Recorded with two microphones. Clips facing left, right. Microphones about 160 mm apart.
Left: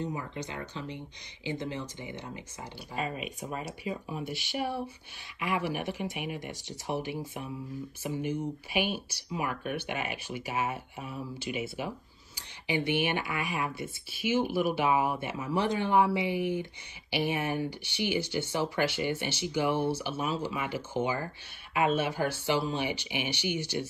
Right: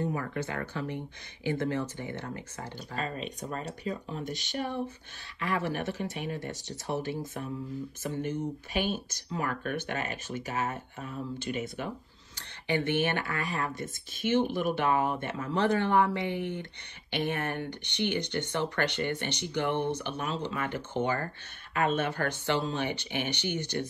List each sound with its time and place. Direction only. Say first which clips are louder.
0.3 s speech: right 4 dB; 20° left (ahead or behind)